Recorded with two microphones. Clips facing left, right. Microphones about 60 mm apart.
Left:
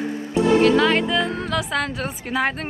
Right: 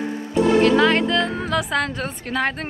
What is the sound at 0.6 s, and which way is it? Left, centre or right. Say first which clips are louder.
A woman's voice: right 1 dB; centre.